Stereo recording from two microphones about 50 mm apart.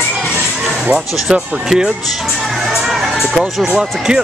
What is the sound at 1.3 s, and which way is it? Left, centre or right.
Speech, centre.